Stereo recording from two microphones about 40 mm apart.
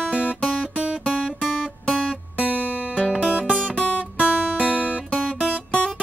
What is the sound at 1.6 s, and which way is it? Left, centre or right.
Guitar, right.